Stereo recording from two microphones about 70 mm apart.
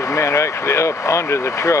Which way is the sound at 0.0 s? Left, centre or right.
Left.